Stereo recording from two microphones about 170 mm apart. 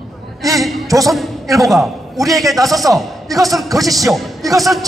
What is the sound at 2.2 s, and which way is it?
Speech, 20° right (ahead or behind).